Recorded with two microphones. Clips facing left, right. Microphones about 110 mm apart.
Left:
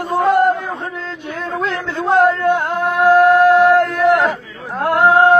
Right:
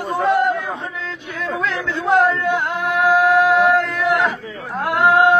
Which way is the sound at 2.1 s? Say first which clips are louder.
Left 3 dB; 45° left (ahead or behind).